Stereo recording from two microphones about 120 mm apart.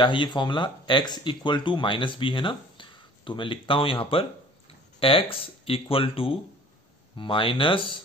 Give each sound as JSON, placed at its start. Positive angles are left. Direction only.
{"t": 0.0, "sound": "speech", "side_deg": 45}